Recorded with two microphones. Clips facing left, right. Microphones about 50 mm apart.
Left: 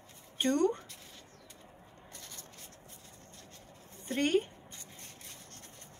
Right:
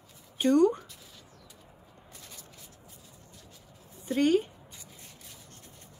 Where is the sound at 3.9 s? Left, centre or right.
Left.